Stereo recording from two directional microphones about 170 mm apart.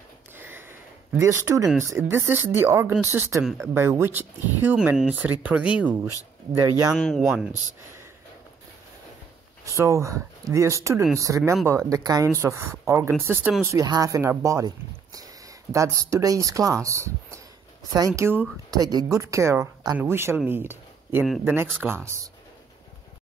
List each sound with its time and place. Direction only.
0.4 s a sound: 10° right (ahead or behind)
1.8 s speech: 15° right (ahead or behind)
9.8 s speech: 15° right (ahead or behind)
13.7 s speech: 20° right (ahead or behind)